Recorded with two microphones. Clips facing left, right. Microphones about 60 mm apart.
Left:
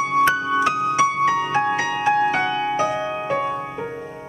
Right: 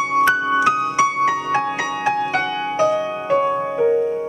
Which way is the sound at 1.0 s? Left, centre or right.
Right.